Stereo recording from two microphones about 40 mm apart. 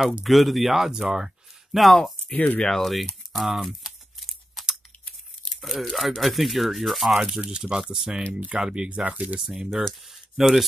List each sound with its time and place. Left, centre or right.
0.2 s speech: centre
0.9 s a sound: centre
1.8 s speech: centre
2.3 s speech: left
2.6 s speech: centre
3.3 s speech: centre
4.6 s tearing: centre
5.9 s speech: centre
7.2 s speech: centre
9.0 s speech: right
9.5 s speech: centre
9.9 s a sound: centre